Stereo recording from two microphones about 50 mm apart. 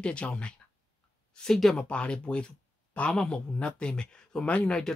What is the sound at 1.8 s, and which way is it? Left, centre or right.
Speech, left.